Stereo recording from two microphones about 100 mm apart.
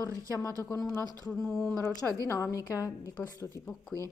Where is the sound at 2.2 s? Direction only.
35° left (ahead or behind).